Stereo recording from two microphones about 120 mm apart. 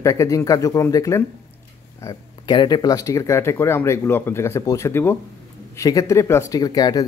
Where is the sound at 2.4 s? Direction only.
35° left (ahead or behind).